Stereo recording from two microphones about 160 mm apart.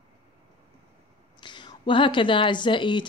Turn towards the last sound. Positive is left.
turn(degrees=30)  # may be behind; listen again after turning